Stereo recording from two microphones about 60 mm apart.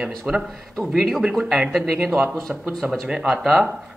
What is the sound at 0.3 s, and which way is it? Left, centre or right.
Speech, centre.